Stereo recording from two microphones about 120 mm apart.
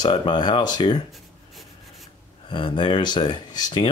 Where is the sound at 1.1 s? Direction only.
Centre (ahead or behind).